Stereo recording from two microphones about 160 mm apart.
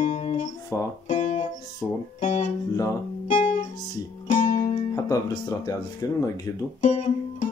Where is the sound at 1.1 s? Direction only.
50° left (ahead or behind).